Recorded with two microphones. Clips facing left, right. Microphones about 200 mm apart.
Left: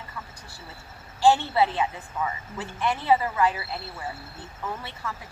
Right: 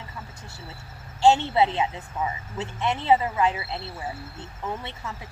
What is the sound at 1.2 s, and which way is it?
Speech, 25° right (ahead or behind).